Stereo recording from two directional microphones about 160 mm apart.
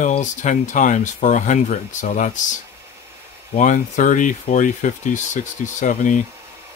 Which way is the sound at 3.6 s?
50° left (ahead or behind).